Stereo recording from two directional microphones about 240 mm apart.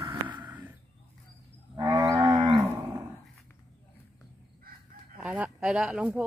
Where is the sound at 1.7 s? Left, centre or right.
Centre.